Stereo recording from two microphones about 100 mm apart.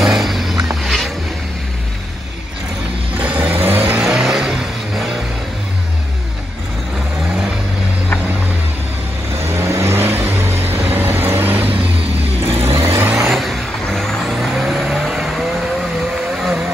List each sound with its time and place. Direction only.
0.0 s vehicle: centre (ahead or behind)
3.2 s vehicle: 15° right (ahead or behind)
4.0 s vehicle: 5° right (ahead or behind)
9.5 s vehicle: 30° right (ahead or behind)
13.1 s vehicle: 5° right (ahead or behind)